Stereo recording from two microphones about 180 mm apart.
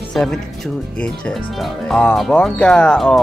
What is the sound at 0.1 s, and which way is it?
Speech, centre (ahead or behind).